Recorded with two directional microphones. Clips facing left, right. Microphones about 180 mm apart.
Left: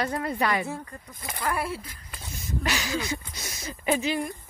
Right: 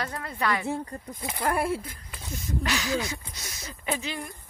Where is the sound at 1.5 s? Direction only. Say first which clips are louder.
Right 3 dB; 50° right (ahead or behind).